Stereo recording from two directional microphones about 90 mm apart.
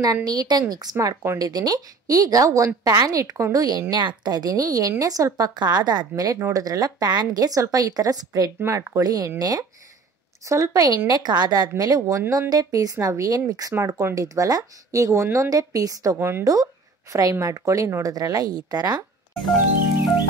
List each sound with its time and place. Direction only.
0.0 s a woman's voice: 45° right (ahead or behind)
0.9 s speech: 30° right (ahead or behind)
1.4 s a woman's voice: 45° right (ahead or behind)
4.2 s a woman's voice: 50° right (ahead or behind)
8.5 s speech: 25° right (ahead or behind)
9.0 s a woman's voice: 45° right (ahead or behind)
13.7 s speech: 30° right (ahead or behind)
16.2 s speech: 25° right (ahead or behind)
17.1 s a woman's voice: 40° right (ahead or behind)